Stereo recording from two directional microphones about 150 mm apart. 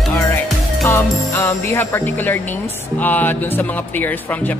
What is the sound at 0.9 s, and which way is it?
Music, 15° left (ahead or behind).